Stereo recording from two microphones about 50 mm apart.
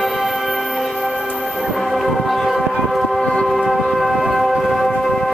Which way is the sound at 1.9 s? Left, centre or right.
Centre.